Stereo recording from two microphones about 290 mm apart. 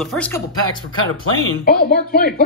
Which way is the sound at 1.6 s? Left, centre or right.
Left.